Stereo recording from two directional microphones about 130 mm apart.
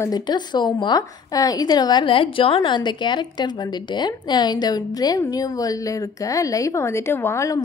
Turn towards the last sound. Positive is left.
turn(degrees=20)  # may be behind; listen again after turning